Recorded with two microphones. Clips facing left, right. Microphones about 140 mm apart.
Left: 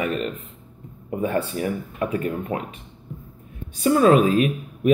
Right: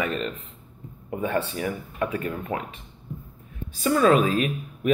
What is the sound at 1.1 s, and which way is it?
Speech, 35° left (ahead or behind).